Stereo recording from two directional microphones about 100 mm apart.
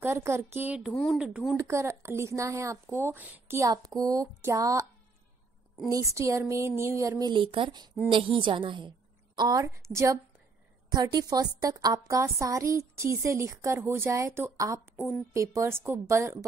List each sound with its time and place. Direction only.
0.0 s speech: 30° right (ahead or behind)
1.1 s speech: 5° right (ahead or behind)
1.6 s speech: 30° right (ahead or behind)
3.6 s a woman's voice: 40° right (ahead or behind)
5.9 s a woman's voice: 35° right (ahead or behind)
7.2 s a woman's voice: 60° right (ahead or behind); by 10.0 s 30° right (ahead or behind)
10.9 s a woman's voice: 40° right (ahead or behind); by 14.8 s 25° right (ahead or behind)
15.0 s speech: 10° left (ahead or behind)
15.3 s speech: 30° right (ahead or behind)